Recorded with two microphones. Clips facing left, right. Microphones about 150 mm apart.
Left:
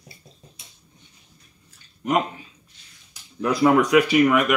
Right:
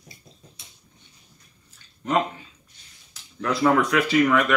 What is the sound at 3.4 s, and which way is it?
Speech, 15° left (ahead or behind).